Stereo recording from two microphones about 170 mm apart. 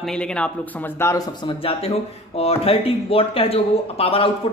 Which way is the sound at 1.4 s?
35° left (ahead or behind).